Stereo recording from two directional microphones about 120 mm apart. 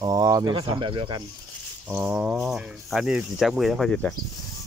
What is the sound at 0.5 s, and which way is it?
Speech, 40° right (ahead or behind).